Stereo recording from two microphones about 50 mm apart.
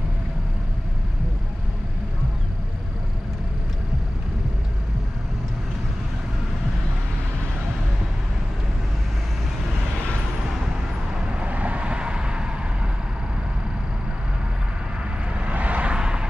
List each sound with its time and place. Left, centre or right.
11.4 s vehicle: right
15.3 s vehicle: right
16.0 s vehicle: centre